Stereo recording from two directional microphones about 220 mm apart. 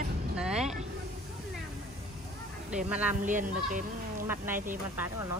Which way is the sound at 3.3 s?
35° right (ahead or behind).